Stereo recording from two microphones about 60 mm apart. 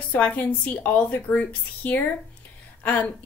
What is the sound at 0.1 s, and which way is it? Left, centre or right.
A woman's voice, left.